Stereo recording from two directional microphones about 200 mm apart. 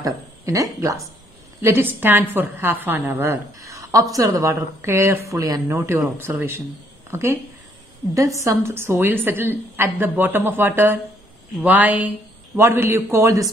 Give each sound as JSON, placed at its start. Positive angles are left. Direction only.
{"t": 0.0, "sound": "a woman's voice", "side_deg": -15}